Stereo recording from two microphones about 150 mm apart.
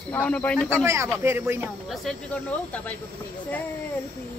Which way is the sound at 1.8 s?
Centre (ahead or behind).